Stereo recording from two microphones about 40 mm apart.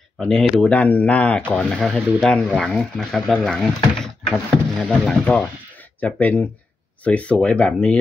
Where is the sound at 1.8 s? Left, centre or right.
Centre.